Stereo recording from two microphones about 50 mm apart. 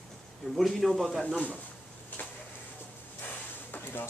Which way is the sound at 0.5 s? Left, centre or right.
Centre.